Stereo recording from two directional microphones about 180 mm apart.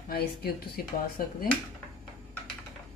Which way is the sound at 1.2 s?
55° left (ahead or behind).